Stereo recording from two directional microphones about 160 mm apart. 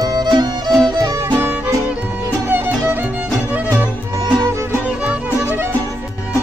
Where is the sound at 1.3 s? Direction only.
15° right (ahead or behind).